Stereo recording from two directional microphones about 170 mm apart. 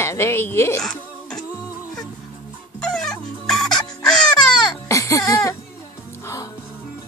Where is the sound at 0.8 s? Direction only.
5° left (ahead or behind).